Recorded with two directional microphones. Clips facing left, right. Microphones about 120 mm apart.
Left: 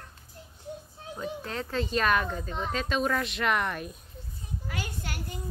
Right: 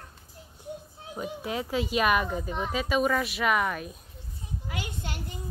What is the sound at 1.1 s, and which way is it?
Speech, 10° right (ahead or behind).